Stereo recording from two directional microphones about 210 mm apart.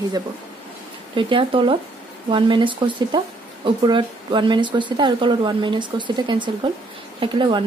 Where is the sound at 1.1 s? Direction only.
25° right (ahead or behind).